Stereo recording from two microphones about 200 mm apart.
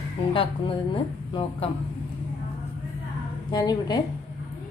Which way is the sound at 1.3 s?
25° left (ahead or behind).